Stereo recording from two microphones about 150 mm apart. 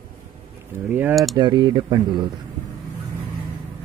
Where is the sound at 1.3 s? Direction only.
30° right (ahead or behind).